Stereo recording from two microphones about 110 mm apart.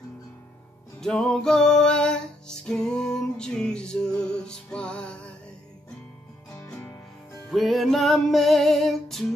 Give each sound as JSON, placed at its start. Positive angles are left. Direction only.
{"t": 1.0, "sound": "music", "side_deg": 5}
{"t": 6.7, "sound": "music", "side_deg": 20}
{"t": 7.5, "sound": "music", "side_deg": 0}